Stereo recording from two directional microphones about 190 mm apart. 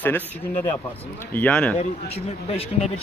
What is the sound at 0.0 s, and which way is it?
Speech, 10° left (ahead or behind).